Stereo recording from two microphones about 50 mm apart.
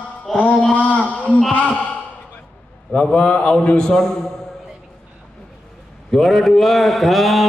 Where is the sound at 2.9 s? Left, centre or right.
Left.